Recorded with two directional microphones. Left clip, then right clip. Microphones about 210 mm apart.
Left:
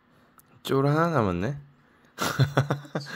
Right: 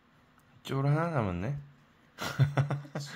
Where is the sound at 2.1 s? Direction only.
35° left (ahead or behind).